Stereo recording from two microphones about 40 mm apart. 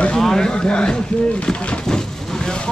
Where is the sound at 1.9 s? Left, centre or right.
Centre.